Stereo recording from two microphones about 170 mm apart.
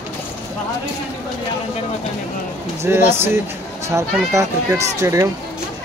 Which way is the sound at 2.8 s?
15° right (ahead or behind).